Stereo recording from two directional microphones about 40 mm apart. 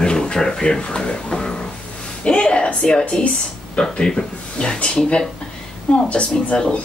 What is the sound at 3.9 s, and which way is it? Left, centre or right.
A woman's voice, centre.